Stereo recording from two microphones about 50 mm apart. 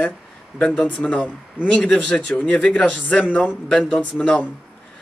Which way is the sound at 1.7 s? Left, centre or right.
Centre.